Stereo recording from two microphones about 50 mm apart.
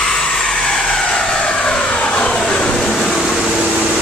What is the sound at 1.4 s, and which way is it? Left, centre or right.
Vehicle, centre.